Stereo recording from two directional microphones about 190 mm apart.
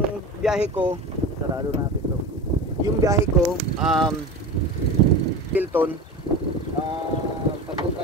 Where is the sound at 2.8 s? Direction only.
15° right (ahead or behind).